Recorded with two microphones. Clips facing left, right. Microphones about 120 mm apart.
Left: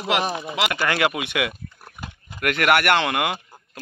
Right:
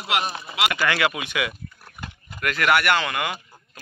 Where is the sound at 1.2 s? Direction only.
60° left (ahead or behind).